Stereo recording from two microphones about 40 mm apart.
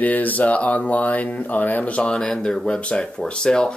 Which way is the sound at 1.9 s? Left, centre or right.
Left.